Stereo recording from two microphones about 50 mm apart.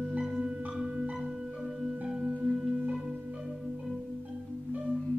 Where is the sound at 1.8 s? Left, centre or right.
Centre.